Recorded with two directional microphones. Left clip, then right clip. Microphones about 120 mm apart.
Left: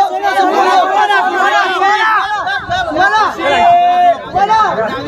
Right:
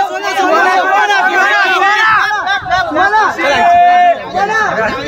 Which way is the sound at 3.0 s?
45° right (ahead or behind).